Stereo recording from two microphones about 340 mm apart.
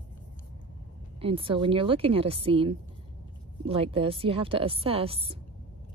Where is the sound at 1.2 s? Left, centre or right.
Centre.